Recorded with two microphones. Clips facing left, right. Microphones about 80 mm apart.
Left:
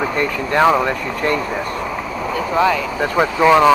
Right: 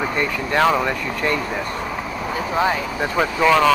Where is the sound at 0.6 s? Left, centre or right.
Centre.